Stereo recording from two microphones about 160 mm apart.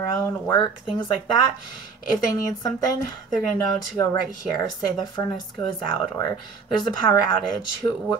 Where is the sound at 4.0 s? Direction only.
20° left (ahead or behind).